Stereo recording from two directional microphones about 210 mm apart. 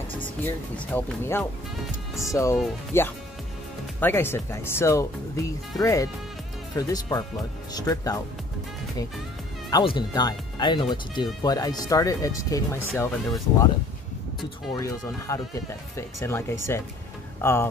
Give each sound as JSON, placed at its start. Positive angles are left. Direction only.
{"t": 0.9, "sound": "speech", "side_deg": 10}
{"t": 9.7, "sound": "speech", "side_deg": 20}
{"t": 14.7, "sound": "speech", "side_deg": 15}